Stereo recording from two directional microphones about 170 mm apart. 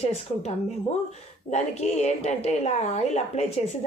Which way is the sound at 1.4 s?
40° left (ahead or behind).